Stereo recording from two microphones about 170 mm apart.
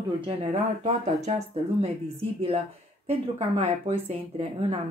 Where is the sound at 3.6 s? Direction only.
40° right (ahead or behind).